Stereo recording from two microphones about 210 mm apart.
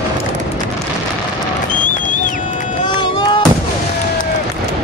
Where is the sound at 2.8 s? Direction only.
20° left (ahead or behind).